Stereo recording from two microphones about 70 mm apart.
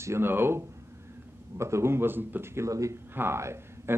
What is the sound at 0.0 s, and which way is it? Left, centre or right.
Speech, right.